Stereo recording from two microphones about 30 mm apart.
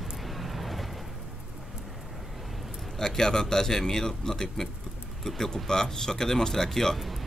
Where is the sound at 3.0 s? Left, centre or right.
Centre.